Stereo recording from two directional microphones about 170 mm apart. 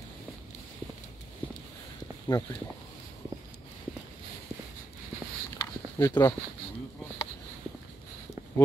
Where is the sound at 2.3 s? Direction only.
25° left (ahead or behind).